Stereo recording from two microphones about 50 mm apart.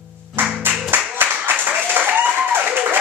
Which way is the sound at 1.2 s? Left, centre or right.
Right.